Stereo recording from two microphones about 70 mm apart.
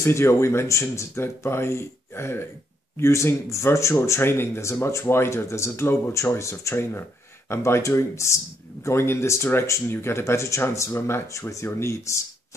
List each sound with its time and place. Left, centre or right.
0.0 s speech: left